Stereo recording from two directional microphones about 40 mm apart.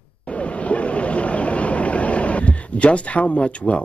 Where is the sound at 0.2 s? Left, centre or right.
Left.